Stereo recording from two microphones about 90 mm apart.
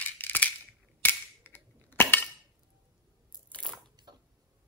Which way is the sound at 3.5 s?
10° left (ahead or behind).